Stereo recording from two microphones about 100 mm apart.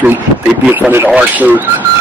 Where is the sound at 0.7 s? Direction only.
20° right (ahead or behind).